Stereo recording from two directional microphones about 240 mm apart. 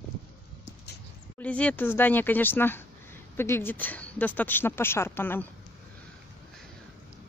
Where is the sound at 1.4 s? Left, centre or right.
Centre.